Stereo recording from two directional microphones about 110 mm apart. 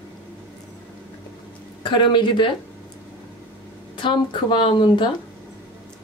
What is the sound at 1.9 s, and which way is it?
Speech, 45° left (ahead or behind).